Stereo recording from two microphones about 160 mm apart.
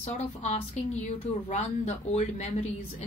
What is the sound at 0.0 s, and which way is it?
A woman's voice, 45° left (ahead or behind).